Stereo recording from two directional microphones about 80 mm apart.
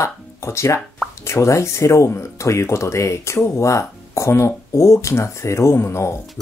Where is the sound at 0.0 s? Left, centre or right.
Left.